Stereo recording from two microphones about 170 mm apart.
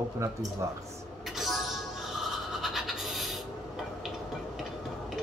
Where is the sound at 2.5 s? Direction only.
Centre (ahead or behind).